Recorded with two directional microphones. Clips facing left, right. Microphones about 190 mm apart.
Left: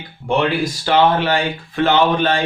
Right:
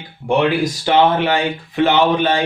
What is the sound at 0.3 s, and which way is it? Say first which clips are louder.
Speech: right 2 dB; 15° right (ahead or behind).